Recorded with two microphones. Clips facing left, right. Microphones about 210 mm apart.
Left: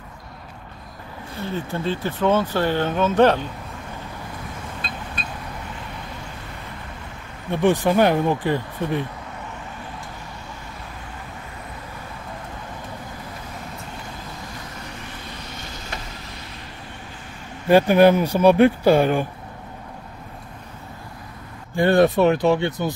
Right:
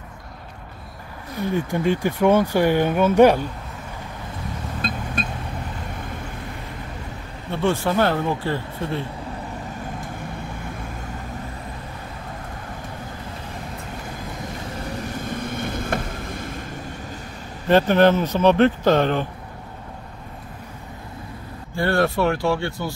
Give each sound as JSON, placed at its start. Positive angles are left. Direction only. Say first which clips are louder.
{"t": 1.4, "sound": "speech", "louder": "right 4 dB", "side_deg": -15}
{"t": 4.8, "sound": "a sound", "louder": "right 9 dB", "side_deg": -45}
{"t": 7.5, "sound": "speech", "louder": "left 3 dB", "side_deg": 15}
{"t": 15.2, "sound": "vehicle", "louder": "right 10 dB", "side_deg": -50}
{"t": 17.6, "sound": "speech", "louder": "left 2 dB", "side_deg": 10}
{"t": 21.7, "sound": "speech", "louder": "left 4 dB", "side_deg": 20}